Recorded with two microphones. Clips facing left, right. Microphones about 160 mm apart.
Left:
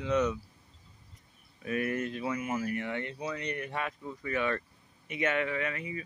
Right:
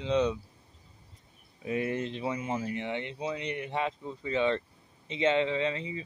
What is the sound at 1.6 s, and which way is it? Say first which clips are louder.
Speech: right 1 dB; 20° right (ahead or behind).